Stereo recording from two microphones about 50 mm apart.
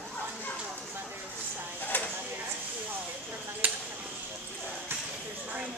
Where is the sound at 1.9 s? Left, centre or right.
Left.